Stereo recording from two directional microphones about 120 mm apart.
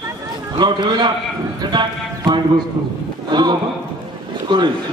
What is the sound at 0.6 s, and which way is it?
A man's voice, 40° right (ahead or behind).